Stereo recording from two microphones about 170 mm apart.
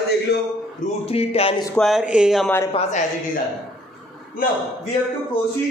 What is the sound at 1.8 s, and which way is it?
Speech, centre (ahead or behind).